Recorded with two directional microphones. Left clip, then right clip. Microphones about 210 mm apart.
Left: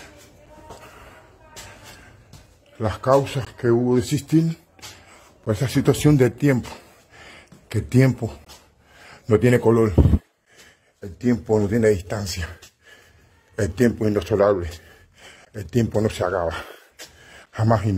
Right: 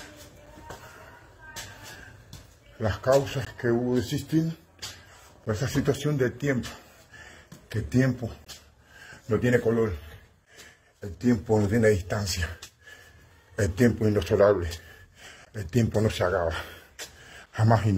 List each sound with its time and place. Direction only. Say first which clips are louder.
2.8 s speech: left 4 dB; 35° left (ahead or behind)
5.5 s speech: left 6 dB; 40° left (ahead or behind)
7.7 s speech: left 6 dB; 45° left (ahead or behind)
8.9 s a sound: left 8 dB; 45° left (ahead or behind)
11.1 s speech: left 4 dB; 45° left (ahead or behind)
13.6 s a man's voice: left 4 dB; 50° left (ahead or behind)
16.0 s a sound: left 2 dB; 45° left (ahead or behind)